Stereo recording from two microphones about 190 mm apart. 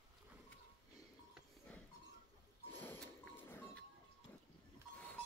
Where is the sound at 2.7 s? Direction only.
10° left (ahead or behind).